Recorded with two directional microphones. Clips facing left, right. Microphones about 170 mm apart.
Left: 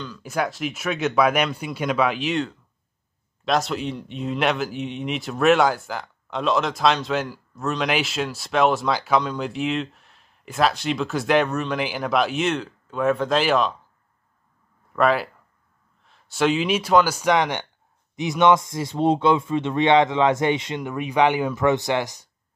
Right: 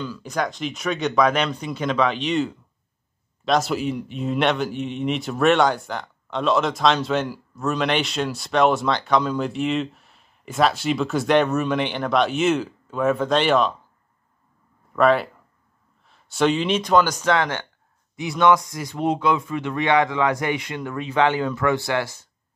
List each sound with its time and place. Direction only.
0.2 s speech: 5° left (ahead or behind)
15.0 s speech: centre (ahead or behind); by 22.3 s 15° left (ahead or behind)